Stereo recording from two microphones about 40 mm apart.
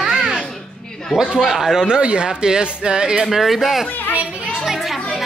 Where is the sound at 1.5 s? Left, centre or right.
Centre.